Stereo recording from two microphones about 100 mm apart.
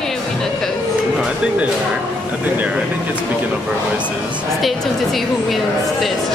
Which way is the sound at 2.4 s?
15° right (ahead or behind).